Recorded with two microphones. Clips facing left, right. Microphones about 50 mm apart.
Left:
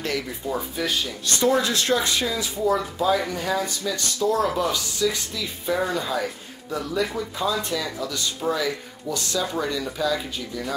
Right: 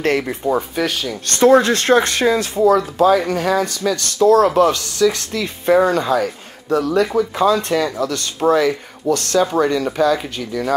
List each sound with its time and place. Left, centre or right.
0.0 s speech: right
0.5 s speech: right
2.6 s speech: right